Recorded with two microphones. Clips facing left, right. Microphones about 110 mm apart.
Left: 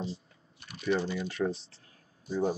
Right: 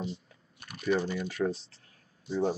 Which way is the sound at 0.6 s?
50° right (ahead or behind).